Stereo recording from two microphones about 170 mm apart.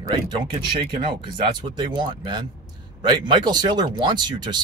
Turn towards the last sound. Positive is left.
turn(degrees=-25)  # may be behind; listen again after turning